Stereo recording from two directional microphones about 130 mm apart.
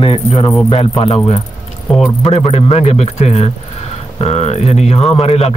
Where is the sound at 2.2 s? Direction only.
55° left (ahead or behind).